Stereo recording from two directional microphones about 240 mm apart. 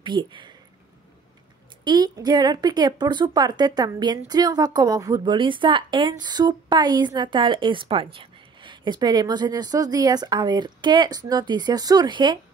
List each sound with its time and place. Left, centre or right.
0.0 s speech: centre
1.9 s a woman's voice: centre